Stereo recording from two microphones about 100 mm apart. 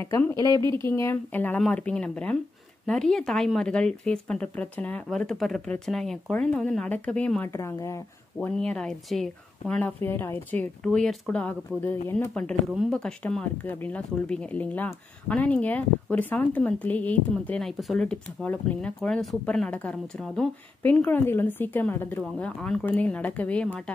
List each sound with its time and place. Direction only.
0.3 s speech: 30° left (ahead or behind); by 7.4 s 10° left (ahead or behind)
7.4 s speech: 30° left (ahead or behind)
8.5 s speech: 5° left (ahead or behind)
9.8 s speech: 15° left (ahead or behind)
18.0 s speech: 15° left (ahead or behind)
18.9 s speech: 5° left (ahead or behind); by 22.2 s 20° left (ahead or behind)
22.4 s speech: 10° left (ahead or behind)